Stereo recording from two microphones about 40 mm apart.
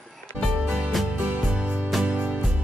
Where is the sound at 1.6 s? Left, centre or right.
Right.